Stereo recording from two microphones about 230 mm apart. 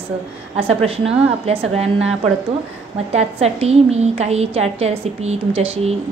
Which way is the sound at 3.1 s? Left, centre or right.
Right.